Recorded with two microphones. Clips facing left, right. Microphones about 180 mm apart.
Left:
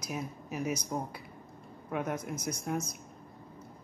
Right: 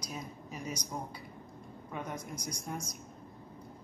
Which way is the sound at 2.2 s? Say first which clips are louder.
Left 5 dB; 10° left (ahead or behind).